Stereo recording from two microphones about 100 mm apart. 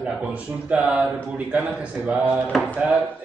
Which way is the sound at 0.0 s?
10° right (ahead or behind).